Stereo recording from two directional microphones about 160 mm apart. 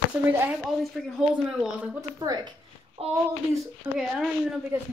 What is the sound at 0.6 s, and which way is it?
Speech, 5° left (ahead or behind).